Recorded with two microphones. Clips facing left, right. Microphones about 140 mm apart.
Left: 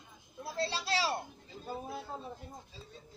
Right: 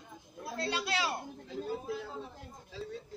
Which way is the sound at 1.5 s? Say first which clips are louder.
Right 7 dB; 85° right.